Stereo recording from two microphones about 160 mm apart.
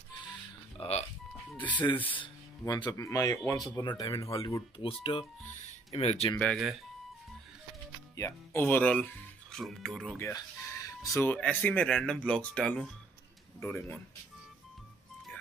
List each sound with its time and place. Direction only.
0.7 s a sound: 40° left (ahead or behind)
2.1 s speech: 30° left (ahead or behind)
4.7 s speech: 35° left (ahead or behind)
6.3 s speech: 5° left (ahead or behind)
8.2 s speech: 10° left (ahead or behind)
10.1 s speech: 15° left (ahead or behind)